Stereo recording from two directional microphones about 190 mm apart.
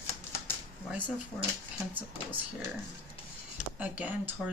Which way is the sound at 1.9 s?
10° right (ahead or behind).